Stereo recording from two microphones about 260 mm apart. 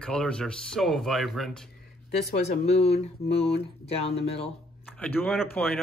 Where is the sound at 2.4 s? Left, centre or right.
Left.